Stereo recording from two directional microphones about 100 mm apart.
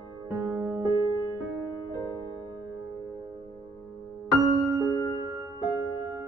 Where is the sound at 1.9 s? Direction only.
35° left (ahead or behind).